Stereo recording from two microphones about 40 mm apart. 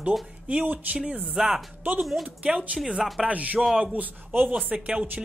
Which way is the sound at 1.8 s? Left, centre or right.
Right.